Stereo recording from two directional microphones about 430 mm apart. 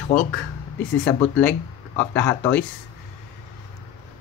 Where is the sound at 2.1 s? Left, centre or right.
Centre.